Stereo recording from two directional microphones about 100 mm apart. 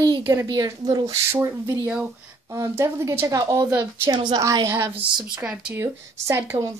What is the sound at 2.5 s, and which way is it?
A woman's voice, 30° right (ahead or behind).